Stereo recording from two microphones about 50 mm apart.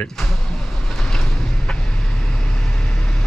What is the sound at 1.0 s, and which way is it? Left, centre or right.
Vehicle, centre.